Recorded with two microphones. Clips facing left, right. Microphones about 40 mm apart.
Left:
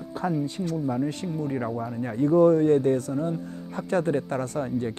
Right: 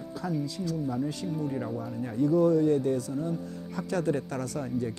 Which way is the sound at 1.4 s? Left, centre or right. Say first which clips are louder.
Left 4 dB; left.